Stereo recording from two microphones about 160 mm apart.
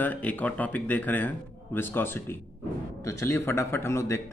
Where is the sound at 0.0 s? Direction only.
10° left (ahead or behind).